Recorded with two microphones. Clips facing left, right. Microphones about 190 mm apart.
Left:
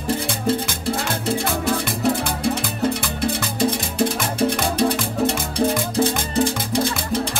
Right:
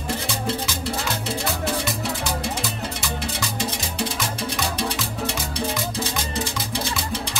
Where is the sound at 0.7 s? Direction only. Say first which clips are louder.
Left 3 dB; 55° left (ahead or behind).